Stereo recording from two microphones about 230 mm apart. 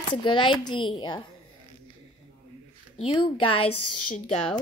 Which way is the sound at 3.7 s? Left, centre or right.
Left.